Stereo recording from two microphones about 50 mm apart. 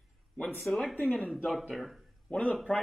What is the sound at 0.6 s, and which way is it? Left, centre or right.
Speech, centre.